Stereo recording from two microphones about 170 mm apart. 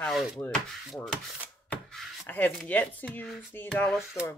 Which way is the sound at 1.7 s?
10° left (ahead or behind).